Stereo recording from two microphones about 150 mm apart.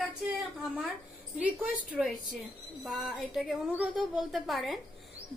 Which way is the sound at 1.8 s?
5° right (ahead or behind).